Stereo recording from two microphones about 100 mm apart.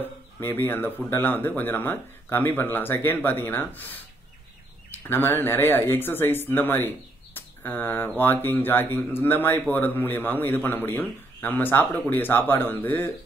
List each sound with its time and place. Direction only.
0.0 s speech: 20° left (ahead or behind)
7.3 s a sound: 20° left (ahead or behind)
8.2 s speech: 20° left (ahead or behind)